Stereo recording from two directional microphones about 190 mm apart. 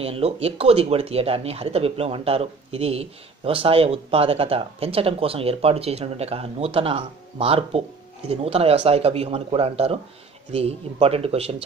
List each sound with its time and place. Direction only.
0.0 s speech: 30° right (ahead or behind)